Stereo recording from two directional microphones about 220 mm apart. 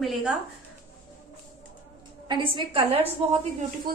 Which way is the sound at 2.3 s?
20° right (ahead or behind).